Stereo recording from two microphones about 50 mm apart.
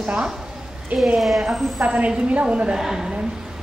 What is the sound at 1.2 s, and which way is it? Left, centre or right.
Speech, centre.